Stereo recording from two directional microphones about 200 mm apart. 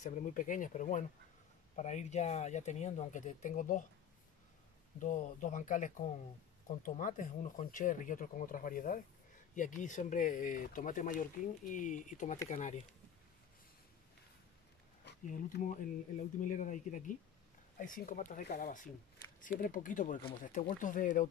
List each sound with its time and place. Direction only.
0.0 s speech: 40° left (ahead or behind)
4.9 s speech: 40° left (ahead or behind)
15.2 s speech: 40° left (ahead or behind)